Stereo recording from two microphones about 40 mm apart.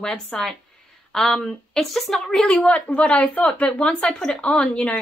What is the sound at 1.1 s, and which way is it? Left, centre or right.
Speech, centre.